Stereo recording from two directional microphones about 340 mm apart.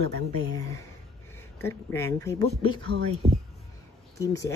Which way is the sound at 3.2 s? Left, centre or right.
Centre.